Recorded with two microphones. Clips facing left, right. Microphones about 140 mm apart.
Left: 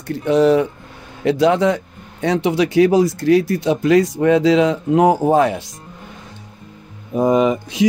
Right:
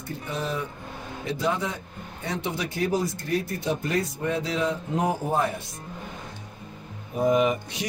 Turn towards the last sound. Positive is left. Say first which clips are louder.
# left 16 dB
turn(degrees=90)